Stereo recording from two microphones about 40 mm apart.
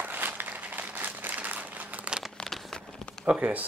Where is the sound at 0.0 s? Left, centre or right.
Right.